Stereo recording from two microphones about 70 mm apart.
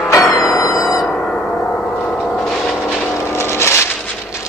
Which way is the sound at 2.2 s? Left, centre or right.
Centre.